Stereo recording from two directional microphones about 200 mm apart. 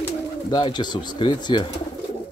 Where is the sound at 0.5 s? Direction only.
20° left (ahead or behind).